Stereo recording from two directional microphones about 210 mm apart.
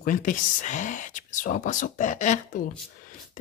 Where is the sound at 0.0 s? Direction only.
40° left (ahead or behind).